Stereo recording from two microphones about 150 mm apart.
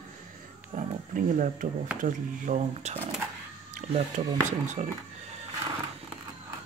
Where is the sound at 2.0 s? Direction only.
55° right (ahead or behind).